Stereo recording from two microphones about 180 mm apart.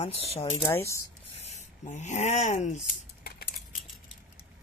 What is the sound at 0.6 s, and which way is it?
Speech, 15° left (ahead or behind).